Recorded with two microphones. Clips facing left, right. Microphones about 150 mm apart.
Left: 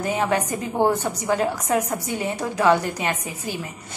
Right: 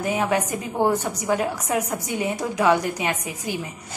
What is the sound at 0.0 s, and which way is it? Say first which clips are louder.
A woman's voice: even; 10° right (ahead or behind).